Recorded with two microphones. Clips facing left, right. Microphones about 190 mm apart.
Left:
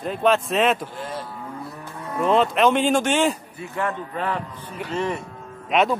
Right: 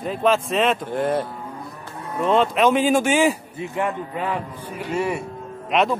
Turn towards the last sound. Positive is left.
turn(degrees=0)  # may be behind; listen again after turning